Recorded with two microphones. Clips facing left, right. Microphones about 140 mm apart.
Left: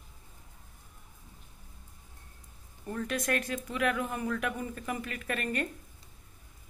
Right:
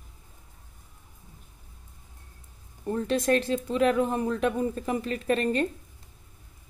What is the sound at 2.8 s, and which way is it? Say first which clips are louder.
Speech: right 7 dB; 30° right (ahead or behind).